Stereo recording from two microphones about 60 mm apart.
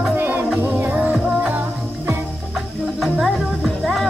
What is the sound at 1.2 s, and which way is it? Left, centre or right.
Music, centre.